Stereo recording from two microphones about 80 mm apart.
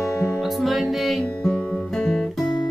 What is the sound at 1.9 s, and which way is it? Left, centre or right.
Guitar, centre.